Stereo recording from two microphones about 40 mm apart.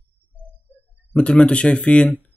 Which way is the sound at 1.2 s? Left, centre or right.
Left.